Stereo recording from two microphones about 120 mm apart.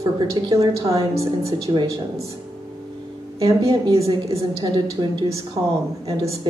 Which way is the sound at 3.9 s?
55° right (ahead or behind).